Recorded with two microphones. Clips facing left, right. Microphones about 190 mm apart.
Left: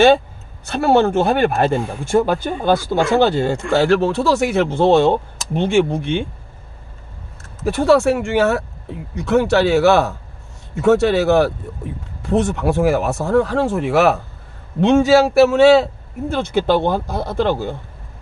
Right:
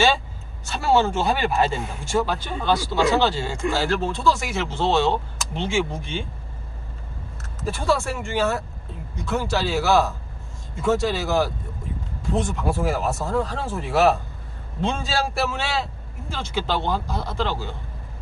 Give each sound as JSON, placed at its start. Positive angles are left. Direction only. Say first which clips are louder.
{"t": 0.7, "sound": "a man's voice", "louder": "left 6 dB", "side_deg": 60}
{"t": 7.6, "sound": "a man's voice", "louder": "left 10 dB", "side_deg": 65}